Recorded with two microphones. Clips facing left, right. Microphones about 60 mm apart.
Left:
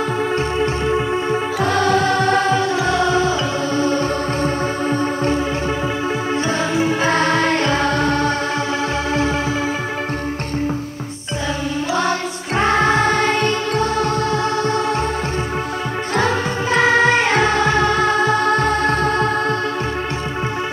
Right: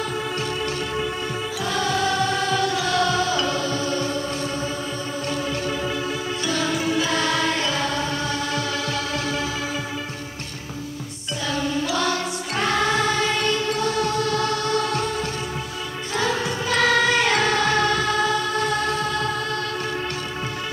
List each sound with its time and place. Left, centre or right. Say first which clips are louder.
0.6 s music: left 7 dB; left
1.6 s music: left 6 dB; left
6.4 s music: left 3 dB; left
11.9 s music: left 4 dB; left
16.7 s music: left 5 dB; left